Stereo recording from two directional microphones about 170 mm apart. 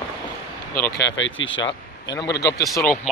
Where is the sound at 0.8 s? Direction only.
85° left.